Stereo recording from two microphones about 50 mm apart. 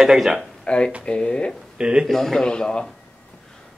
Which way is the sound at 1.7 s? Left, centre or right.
Centre.